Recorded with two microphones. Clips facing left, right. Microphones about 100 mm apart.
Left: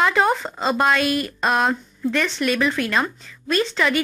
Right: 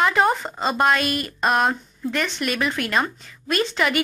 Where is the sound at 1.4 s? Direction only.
Centre (ahead or behind).